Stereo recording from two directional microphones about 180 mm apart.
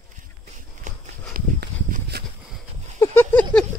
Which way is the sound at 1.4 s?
55° right (ahead or behind).